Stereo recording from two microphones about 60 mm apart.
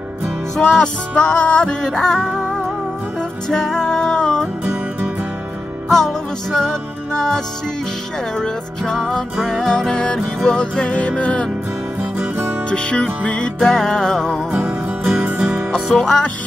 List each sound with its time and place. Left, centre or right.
0.6 s music: centre
3.4 s music: centre
5.9 s music: centre
12.6 s music: centre
15.1 s music: right
15.7 s music: centre